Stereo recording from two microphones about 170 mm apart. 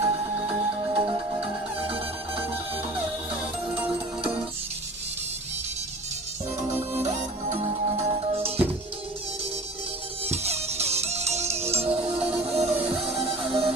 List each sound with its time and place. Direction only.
0.5 s music: 30° right (ahead or behind)
3.7 s music: 10° right (ahead or behind)
7.0 s music: 40° right (ahead or behind)
10.2 s music: 40° right (ahead or behind)